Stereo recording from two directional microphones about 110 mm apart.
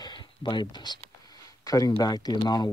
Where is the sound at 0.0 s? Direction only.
45° left (ahead or behind).